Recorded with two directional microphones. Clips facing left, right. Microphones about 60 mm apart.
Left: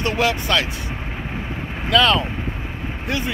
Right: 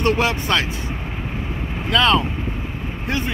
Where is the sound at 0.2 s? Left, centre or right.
Right.